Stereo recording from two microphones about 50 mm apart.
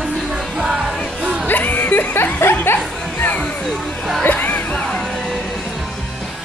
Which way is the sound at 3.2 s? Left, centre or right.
Left.